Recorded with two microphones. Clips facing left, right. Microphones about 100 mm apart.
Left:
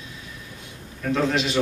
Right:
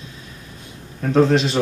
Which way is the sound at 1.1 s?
35° right (ahead or behind).